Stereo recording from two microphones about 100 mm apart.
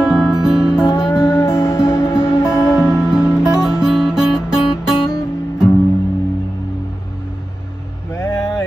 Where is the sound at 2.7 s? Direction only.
5° right (ahead or behind).